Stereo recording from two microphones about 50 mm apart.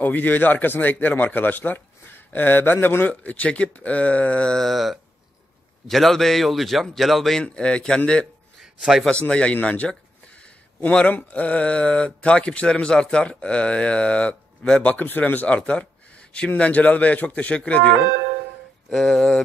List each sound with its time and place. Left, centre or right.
0.0 s speech: left
3.1 s speech: left
4.6 s a man's voice: centre
7.4 s mantra: centre
8.0 s speech: left
8.5 s a sound: centre
9.3 s speech: left
15.0 s speech: left
15.4 s speech: left
18.9 s mantra: centre